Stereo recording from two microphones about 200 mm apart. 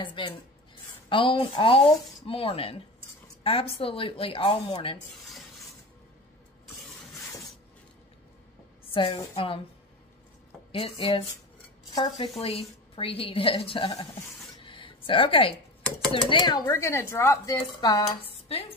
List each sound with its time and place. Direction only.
0.0 s a woman's voice: 25° left (ahead or behind)
8.9 s a woman's voice: 25° left (ahead or behind)
10.7 s a woman's voice: 30° left (ahead or behind)
14.6 s a sound: 25° left (ahead or behind)
16.1 s a woman's voice: 25° left (ahead or behind)